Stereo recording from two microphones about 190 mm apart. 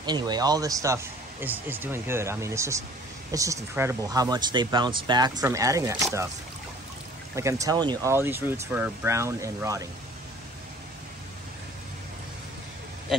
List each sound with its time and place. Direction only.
0.0 s speech: 20° right (ahead or behind)
7.3 s speech: 15° right (ahead or behind)